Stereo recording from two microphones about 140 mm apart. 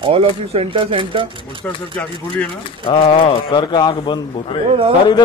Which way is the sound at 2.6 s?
40° left (ahead or behind).